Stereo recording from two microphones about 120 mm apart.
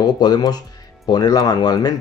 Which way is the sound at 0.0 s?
35° left (ahead or behind).